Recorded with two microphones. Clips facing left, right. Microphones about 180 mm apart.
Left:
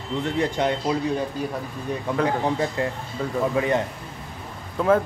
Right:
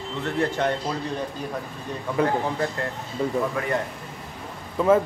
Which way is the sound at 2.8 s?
15° left (ahead or behind).